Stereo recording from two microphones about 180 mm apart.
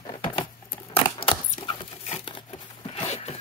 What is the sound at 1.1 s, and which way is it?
Crumpling, 30° left (ahead or behind).